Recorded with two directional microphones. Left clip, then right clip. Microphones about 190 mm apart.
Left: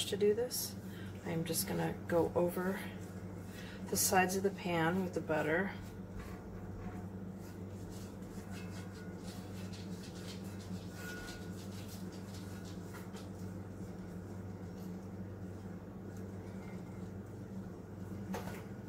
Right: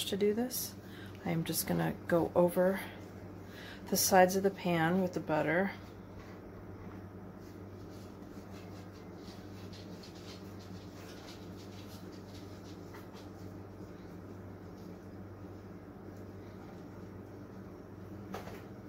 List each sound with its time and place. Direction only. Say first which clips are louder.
0.0 s a woman's voice: even; 45° right (ahead or behind)
3.9 s a woman's voice: right 6 dB; 45° right (ahead or behind)